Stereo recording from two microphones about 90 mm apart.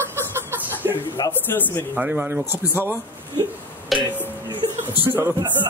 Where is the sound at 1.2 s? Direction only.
25° left (ahead or behind).